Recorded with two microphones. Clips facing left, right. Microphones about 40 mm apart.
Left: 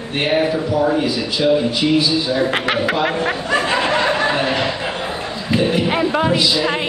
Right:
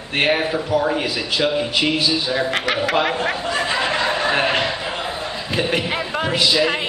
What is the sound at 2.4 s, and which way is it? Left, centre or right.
Speech, centre.